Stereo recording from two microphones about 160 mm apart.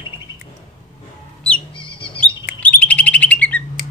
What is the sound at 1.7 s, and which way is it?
Bird, 30° left (ahead or behind).